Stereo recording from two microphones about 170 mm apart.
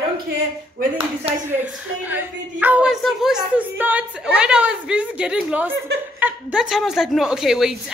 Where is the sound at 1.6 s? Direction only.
10° right (ahead or behind).